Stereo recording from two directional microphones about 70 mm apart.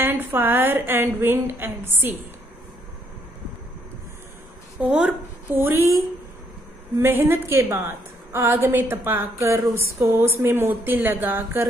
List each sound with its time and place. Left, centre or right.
0.0 s a woman's voice: right
4.9 s a woman's voice: centre
5.6 s a woman's voice: right
7.0 s a woman's voice: right